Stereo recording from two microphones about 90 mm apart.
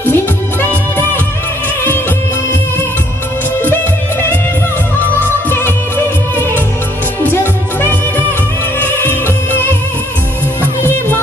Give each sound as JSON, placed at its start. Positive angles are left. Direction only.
{"t": 0.0, "sound": "music", "side_deg": 20}
{"t": 3.6, "sound": "music", "side_deg": 20}
{"t": 7.2, "sound": "music", "side_deg": 25}
{"t": 10.8, "sound": "music", "side_deg": 25}